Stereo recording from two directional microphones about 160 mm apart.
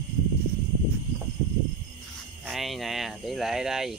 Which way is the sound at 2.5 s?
Centre (ahead or behind).